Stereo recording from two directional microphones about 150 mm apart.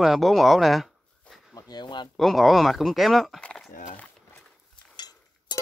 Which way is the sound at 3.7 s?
60° left (ahead or behind).